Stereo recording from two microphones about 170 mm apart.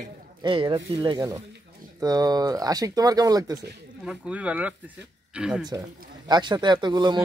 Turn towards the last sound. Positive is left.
turn(degrees=-25)  # may be behind; listen again after turning